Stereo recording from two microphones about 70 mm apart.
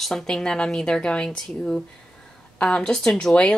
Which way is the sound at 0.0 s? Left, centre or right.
Centre.